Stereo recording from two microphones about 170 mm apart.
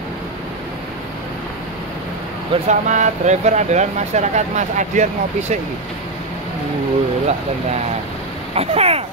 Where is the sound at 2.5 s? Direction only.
45° right (ahead or behind).